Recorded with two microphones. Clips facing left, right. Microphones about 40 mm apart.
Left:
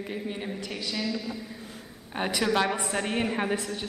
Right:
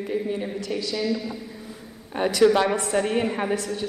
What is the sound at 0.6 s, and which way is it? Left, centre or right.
Speech, centre.